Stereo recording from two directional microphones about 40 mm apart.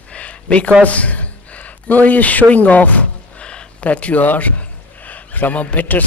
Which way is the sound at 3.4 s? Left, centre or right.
Left.